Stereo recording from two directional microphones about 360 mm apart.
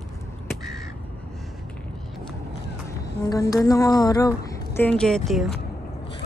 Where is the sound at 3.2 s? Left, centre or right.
Centre.